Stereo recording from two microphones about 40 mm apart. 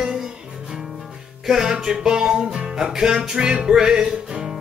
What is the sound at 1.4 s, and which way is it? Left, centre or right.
Music, centre.